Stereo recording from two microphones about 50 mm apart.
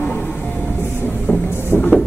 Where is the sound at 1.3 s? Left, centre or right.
Left.